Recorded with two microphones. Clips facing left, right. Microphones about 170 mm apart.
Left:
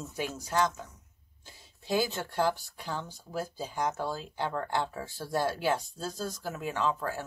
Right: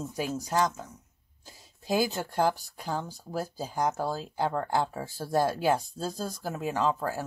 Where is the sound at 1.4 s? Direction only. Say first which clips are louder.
Right 4 dB; 40° right (ahead or behind).